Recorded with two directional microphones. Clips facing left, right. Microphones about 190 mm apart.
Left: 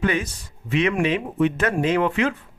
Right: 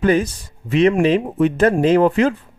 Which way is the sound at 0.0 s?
40° right (ahead or behind).